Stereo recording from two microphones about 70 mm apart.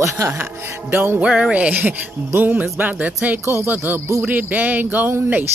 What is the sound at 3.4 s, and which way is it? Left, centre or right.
Mantra, right.